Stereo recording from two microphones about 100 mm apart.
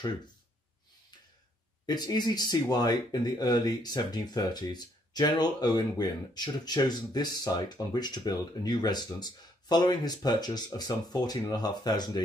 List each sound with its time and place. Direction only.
1.9 s speech: 45° left (ahead or behind)